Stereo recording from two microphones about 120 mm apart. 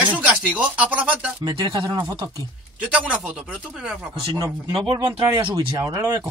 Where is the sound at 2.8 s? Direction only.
10° right (ahead or behind).